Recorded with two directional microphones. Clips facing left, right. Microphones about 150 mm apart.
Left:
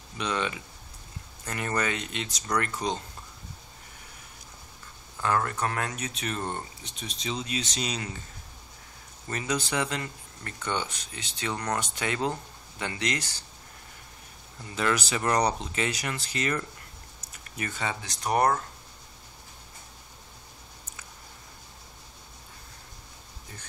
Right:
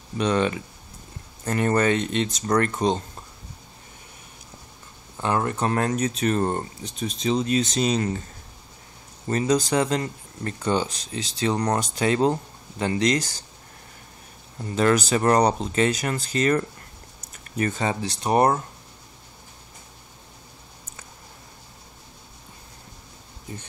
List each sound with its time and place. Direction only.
0.2 s speech: 40° right (ahead or behind)
5.1 s speech: 25° right (ahead or behind)
5.9 s speech: 45° right (ahead or behind)
9.3 s speech: 35° right (ahead or behind)
14.8 s speech: 45° right (ahead or behind); by 18.6 s 25° right (ahead or behind)